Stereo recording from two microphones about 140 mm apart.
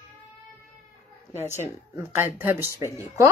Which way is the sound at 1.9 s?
15° right (ahead or behind).